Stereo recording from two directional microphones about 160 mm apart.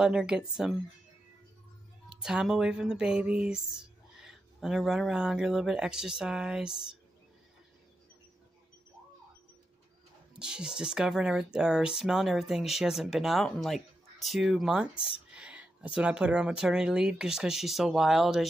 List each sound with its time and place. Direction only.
0.0 s speech: 5° right (ahead or behind)
2.0 s speech: 5° right (ahead or behind)
10.3 s speech: 5° right (ahead or behind)
15.0 s speech: 35° left (ahead or behind)
15.3 s speech: 10° right (ahead or behind)